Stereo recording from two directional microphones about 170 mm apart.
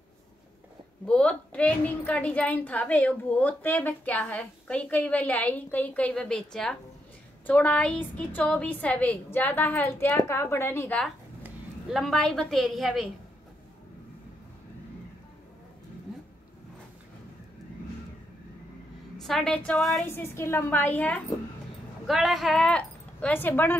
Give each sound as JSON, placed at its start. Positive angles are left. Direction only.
{"t": 1.0, "sound": "a woman's voice", "side_deg": 5}
{"t": 11.4, "sound": "a woman's voice", "side_deg": 0}
{"t": 19.1, "sound": "a woman's voice", "side_deg": 0}
{"t": 20.1, "sound": "a woman's voice", "side_deg": 15}